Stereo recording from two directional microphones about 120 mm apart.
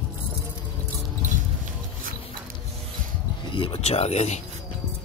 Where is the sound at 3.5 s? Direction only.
50° left (ahead or behind); by 4.4 s 65° left (ahead or behind).